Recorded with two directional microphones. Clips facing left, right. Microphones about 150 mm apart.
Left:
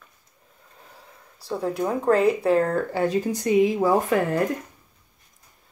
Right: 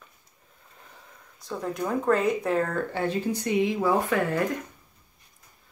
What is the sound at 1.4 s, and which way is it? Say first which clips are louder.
Speech: left 5 dB; 30° left (ahead or behind).